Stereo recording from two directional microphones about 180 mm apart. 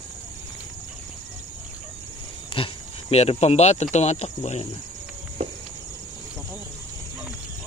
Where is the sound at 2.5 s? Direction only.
30° left (ahead or behind).